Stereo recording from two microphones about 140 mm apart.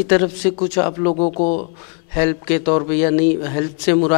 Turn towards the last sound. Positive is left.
turn(degrees=15)  # may be behind; listen again after turning